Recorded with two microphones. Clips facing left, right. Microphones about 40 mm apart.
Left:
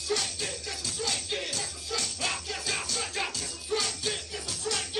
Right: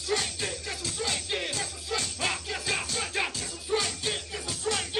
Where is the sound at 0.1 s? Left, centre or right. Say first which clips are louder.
Right 2 dB; right.